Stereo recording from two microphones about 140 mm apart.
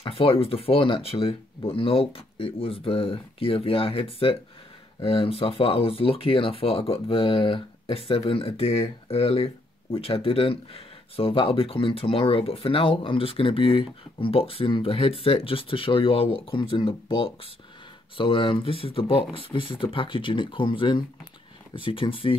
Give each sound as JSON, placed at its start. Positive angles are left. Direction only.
{"t": 0.0, "sound": "speech", "side_deg": 40}